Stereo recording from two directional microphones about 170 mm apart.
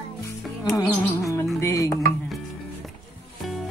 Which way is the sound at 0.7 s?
20° left (ahead or behind).